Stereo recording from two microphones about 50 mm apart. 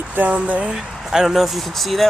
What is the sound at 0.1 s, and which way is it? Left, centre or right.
Speech, right.